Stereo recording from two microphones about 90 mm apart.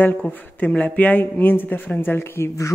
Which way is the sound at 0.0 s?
20° left (ahead or behind).